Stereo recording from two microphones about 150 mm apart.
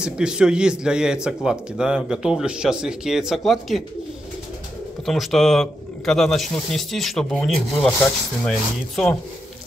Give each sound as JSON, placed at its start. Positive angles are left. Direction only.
{"t": 0.0, "sound": "speech", "side_deg": -5}
{"t": 5.0, "sound": "speech", "side_deg": 0}